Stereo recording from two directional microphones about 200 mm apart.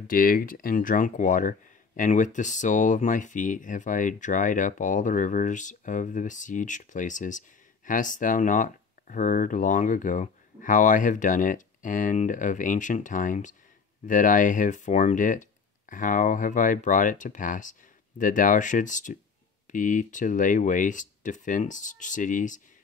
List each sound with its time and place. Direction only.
0.1 s speech: 45° left (ahead or behind)